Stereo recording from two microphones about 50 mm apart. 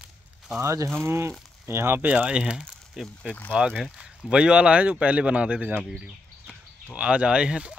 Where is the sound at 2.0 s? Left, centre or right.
Right.